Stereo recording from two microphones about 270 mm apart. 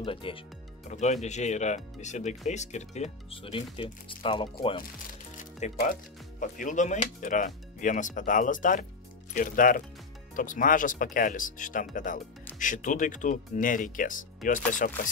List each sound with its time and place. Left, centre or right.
0.0 s speech: centre
5.4 s speech: left